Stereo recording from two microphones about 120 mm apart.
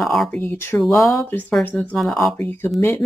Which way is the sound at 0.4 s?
15° left (ahead or behind).